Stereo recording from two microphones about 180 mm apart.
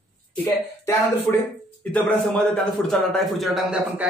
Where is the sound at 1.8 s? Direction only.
5° left (ahead or behind).